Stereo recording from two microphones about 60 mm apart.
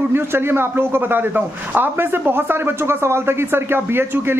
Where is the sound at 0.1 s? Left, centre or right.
Right.